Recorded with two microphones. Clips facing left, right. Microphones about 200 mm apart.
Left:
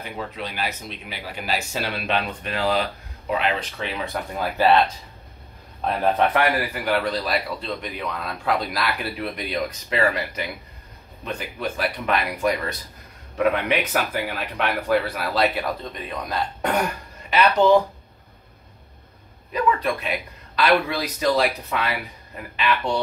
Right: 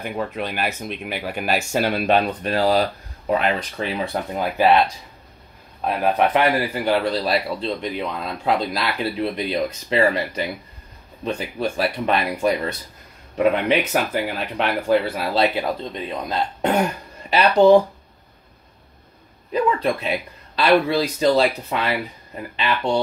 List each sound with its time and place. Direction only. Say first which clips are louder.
0.4 s speech: right 4 dB; 55° right (ahead or behind); by 4.8 s 20° right (ahead or behind)
5.9 s speech: right 1 dB; 10° right (ahead or behind)
6.3 s a man's voice: right 3 dB; 25° right (ahead or behind)
19.5 s a man's voice: right 2 dB; 30° right (ahead or behind)